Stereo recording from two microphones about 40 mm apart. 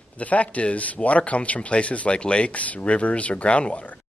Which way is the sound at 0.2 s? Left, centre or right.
Left.